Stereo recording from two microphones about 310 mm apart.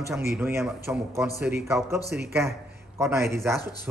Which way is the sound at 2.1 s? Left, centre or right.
Right.